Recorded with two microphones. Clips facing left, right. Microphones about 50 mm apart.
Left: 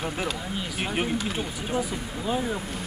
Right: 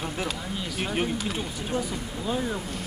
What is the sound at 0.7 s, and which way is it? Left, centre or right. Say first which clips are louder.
Speech: even; centre.